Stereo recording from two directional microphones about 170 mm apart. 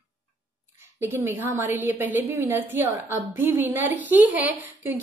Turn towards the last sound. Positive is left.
turn(degrees=-10)  # may be behind; listen again after turning